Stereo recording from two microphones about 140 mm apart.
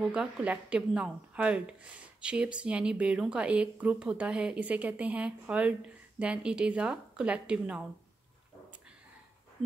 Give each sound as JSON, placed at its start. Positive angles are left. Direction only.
{"t": 0.0, "sound": "a woman's voice", "side_deg": -5}